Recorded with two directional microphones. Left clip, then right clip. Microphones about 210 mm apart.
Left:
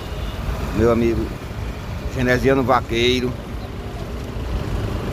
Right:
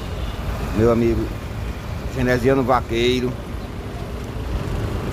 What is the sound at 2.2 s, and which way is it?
Speech, centre (ahead or behind).